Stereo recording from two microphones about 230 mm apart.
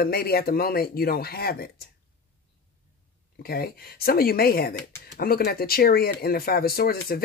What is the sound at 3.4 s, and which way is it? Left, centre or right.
Speech, left.